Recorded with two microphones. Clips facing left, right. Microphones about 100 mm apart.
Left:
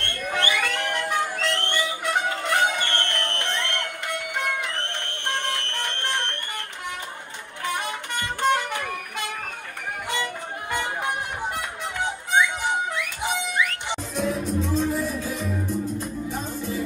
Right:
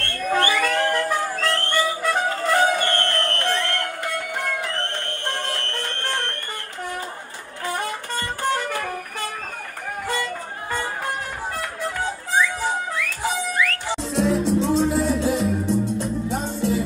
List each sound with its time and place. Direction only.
0.0 s music: 20° left (ahead or behind)
5.0 s music: 20° left (ahead or behind)
7.6 s music: 20° left (ahead or behind)
10.7 s music: 20° left (ahead or behind)
14.1 s music: 90° right